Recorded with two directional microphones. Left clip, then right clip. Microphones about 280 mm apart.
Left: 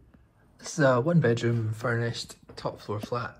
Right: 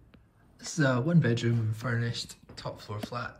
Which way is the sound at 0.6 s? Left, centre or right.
Centre.